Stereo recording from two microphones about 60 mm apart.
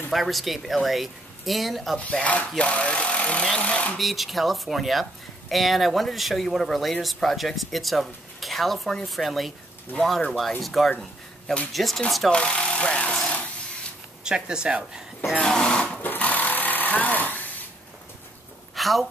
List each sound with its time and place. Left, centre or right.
0.1 s speech: centre
2.0 s speech: left
3.9 s speech: centre
12.3 s speech: centre
14.2 s a woman's voice: centre
15.3 s speech: centre
16.0 s sewing machine: left
18.8 s speech: centre